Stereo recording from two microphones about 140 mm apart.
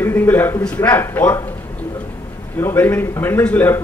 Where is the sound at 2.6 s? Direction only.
15° left (ahead or behind).